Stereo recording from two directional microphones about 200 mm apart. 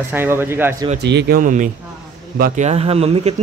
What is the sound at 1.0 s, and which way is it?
Speech, 60° right (ahead or behind).